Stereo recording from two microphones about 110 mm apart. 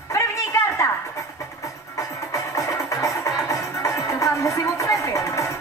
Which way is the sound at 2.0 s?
30° left (ahead or behind).